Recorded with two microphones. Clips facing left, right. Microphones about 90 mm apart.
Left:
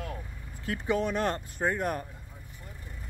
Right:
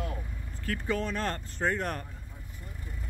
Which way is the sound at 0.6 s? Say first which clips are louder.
Left 3 dB; 20° left (ahead or behind).